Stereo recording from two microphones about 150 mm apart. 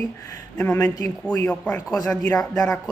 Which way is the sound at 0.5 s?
10° left (ahead or behind).